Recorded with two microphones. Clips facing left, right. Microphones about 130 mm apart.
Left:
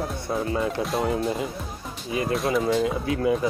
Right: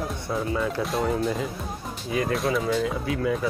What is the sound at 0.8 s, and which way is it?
Speech, centre (ahead or behind).